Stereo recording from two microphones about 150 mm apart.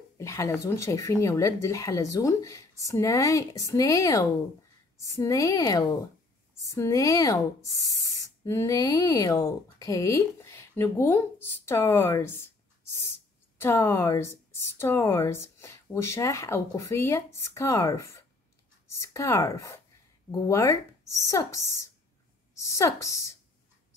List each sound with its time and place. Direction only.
0.2 s a woman's voice: 20° left (ahead or behind)